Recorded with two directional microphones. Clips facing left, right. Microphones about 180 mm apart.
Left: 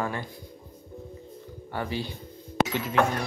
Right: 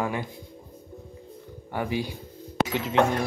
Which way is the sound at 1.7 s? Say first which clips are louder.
Right 3 dB; 15° right (ahead or behind).